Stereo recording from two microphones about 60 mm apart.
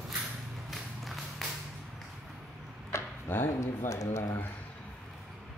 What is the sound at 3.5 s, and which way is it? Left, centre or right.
Speech, left.